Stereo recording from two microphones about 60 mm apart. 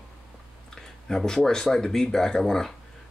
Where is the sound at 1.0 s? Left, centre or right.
Centre.